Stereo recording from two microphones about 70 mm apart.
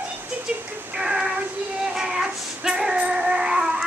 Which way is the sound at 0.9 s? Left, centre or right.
Centre.